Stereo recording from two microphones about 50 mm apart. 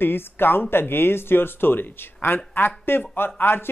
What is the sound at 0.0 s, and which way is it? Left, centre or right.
Speech, left.